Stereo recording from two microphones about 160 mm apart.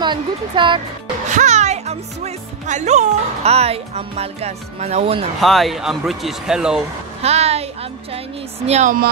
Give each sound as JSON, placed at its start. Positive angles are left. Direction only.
{"t": 0.0, "sound": "speech", "side_deg": -30}
{"t": 1.3, "sound": "speech", "side_deg": -45}
{"t": 5.4, "sound": "speech", "side_deg": 0}
{"t": 7.2, "sound": "a woman's voice", "side_deg": -40}
{"t": 8.6, "sound": "speech", "side_deg": -45}